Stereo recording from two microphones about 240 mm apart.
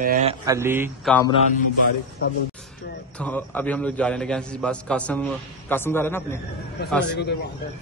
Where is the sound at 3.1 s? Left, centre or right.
Centre.